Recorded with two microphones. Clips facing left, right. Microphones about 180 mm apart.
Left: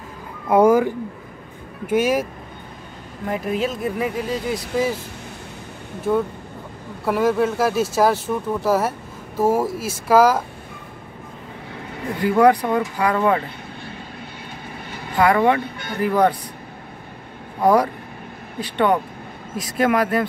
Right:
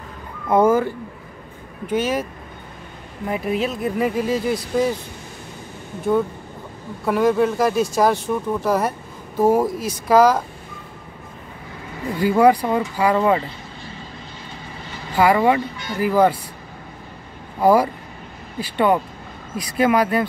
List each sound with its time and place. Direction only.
0.5 s speech: 10° left (ahead or behind)
3.3 s speech: 5° right (ahead or behind)
7.1 s speech: centre (ahead or behind)
12.2 s speech: 5° right (ahead or behind)
15.1 s speech: 5° right (ahead or behind)
15.6 s speech: 55° left (ahead or behind)
16.0 s speech: 5° right (ahead or behind)
17.6 s speech: 5° right (ahead or behind)